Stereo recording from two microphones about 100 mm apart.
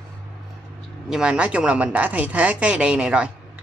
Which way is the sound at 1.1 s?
10° right (ahead or behind).